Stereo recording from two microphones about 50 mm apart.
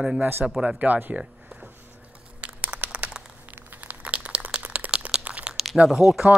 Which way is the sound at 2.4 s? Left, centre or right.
Right.